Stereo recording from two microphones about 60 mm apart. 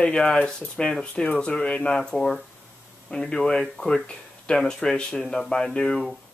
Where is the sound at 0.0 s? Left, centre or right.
Centre.